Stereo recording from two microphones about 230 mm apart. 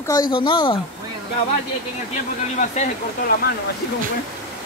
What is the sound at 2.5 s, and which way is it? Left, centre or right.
Speech, left.